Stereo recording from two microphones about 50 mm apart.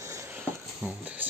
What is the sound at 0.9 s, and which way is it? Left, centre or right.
Speech, right.